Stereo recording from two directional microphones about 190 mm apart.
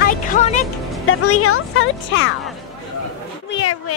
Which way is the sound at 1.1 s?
90° left.